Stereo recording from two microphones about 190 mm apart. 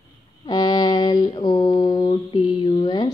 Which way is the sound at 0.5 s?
20° left (ahead or behind).